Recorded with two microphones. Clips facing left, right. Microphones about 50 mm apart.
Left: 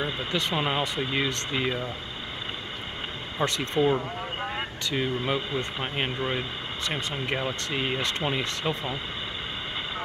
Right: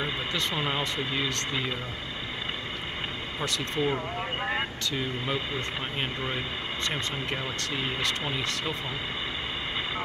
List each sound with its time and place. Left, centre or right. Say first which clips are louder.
0.3 s speech: left 4 dB; centre
3.3 s speech: left 5 dB; left
4.9 s speech: left 5 dB; centre